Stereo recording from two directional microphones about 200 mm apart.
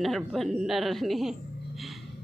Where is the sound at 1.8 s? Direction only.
Centre (ahead or behind).